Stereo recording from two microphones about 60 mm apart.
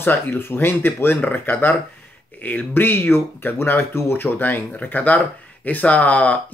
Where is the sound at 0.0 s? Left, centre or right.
Left.